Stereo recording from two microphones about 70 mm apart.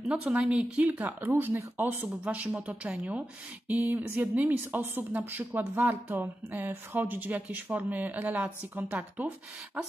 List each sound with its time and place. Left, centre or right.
0.1 s speech: centre
2.2 s speech: centre